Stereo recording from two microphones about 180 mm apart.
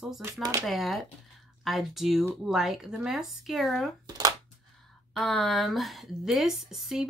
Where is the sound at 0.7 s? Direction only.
Centre (ahead or behind).